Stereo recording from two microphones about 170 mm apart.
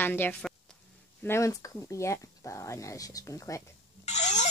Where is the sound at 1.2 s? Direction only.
15° left (ahead or behind).